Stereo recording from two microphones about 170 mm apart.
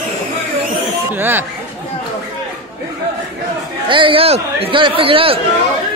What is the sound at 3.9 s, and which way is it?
Speech, 30° right (ahead or behind).